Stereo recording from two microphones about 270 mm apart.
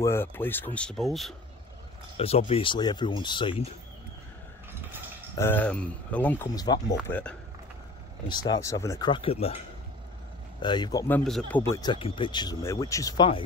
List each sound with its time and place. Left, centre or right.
0.0 s speech: centre
2.1 s speech: left
5.4 s speech: centre
8.5 s speech: centre
10.6 s speech: centre